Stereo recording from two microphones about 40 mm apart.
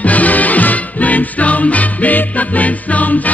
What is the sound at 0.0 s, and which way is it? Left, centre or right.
Music, left.